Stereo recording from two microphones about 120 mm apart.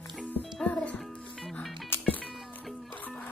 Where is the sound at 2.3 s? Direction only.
Centre (ahead or behind).